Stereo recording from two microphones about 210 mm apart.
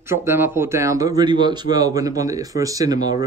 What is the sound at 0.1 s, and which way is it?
Speech, 10° right (ahead or behind).